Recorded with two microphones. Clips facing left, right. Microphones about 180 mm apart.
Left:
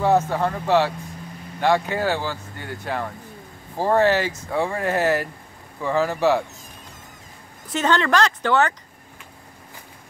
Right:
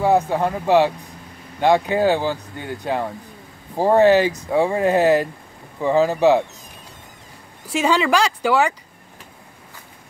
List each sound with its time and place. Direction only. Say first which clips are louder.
0.0 s speech: right 2 dB; 15° right (ahead or behind)
7.6 s speech: right 2 dB; 10° right (ahead or behind)